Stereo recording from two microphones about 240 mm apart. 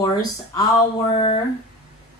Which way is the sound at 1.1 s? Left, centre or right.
Left.